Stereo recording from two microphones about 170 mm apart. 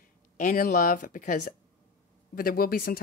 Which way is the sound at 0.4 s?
50° left (ahead or behind).